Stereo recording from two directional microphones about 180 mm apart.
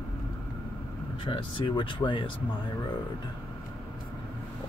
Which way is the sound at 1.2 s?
30° left (ahead or behind).